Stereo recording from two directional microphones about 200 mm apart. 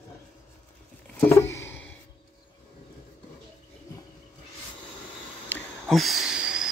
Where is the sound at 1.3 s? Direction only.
15° left (ahead or behind).